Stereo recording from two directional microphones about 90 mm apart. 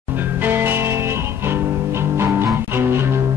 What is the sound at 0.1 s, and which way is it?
Music, 20° right (ahead or behind).